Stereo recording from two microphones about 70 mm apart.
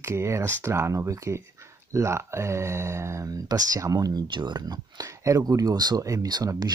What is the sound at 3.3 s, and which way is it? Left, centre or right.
Speech, right.